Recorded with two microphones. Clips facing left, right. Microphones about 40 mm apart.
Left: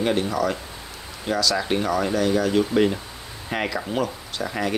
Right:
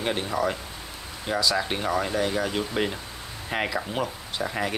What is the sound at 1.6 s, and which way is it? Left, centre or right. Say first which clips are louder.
Speech: left 4 dB; centre.